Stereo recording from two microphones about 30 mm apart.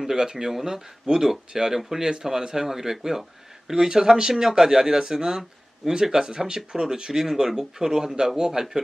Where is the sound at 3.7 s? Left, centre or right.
Right.